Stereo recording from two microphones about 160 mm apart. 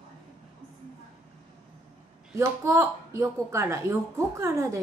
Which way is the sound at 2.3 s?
15° right (ahead or behind).